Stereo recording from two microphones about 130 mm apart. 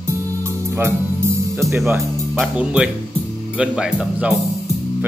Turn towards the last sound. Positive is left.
turn(degrees=-5)  # may be behind; listen again after turning